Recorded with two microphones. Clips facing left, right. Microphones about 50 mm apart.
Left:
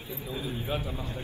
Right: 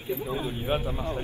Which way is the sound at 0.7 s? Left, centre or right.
Right.